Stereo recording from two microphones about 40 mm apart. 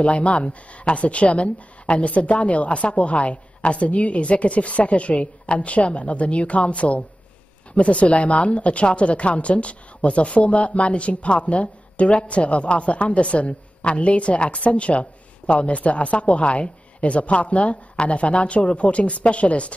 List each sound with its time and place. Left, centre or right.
0.0 s a woman's voice: left